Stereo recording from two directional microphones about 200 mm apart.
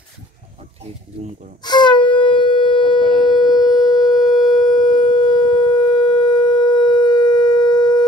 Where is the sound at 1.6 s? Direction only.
20° left (ahead or behind).